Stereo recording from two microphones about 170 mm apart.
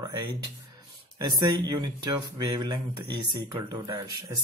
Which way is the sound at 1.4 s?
25° right (ahead or behind).